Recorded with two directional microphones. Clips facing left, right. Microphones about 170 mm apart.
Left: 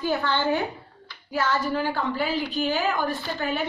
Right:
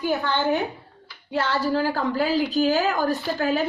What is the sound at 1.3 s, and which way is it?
A woman's voice, 30° right (ahead or behind).